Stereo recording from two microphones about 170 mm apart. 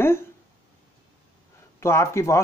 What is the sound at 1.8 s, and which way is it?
Speech, 15° left (ahead or behind).